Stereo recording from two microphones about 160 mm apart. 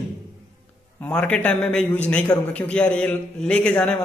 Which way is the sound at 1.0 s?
10° left (ahead or behind).